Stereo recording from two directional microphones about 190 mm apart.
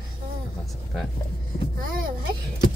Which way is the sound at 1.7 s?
50° right (ahead or behind).